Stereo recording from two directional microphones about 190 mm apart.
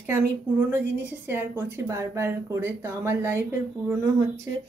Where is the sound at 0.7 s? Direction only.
10° right (ahead or behind).